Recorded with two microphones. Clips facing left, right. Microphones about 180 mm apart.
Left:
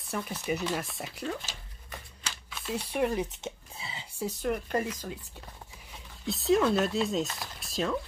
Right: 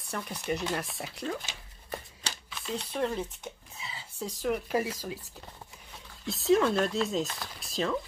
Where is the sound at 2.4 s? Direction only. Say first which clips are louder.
Left 2 dB; centre (ahead or behind); by 4.0 s 25° left (ahead or behind).